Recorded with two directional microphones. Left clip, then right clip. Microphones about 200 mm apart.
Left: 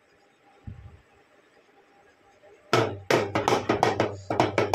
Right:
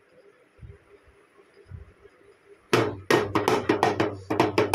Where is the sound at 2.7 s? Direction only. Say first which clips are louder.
Right 1 dB; 10° right (ahead or behind).